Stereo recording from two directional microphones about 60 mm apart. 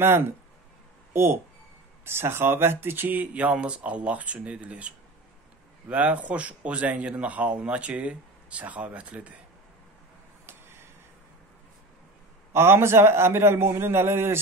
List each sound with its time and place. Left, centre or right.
0.0 s speech: right
10.4 s a sound: right
12.5 s a man's voice: right